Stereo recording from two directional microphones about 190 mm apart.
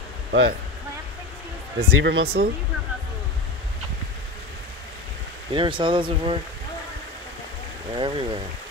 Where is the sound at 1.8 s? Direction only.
60° right (ahead or behind).